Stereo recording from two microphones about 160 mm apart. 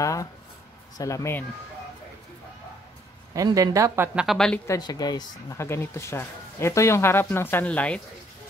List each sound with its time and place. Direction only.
0.0 s a sound: 20° left (ahead or behind)
0.9 s speech: 20° left (ahead or behind)
3.3 s speech: 20° right (ahead or behind); by 4.6 s centre (ahead or behind)
4.6 s speech: 25° left (ahead or behind); by 8.0 s 10° left (ahead or behind)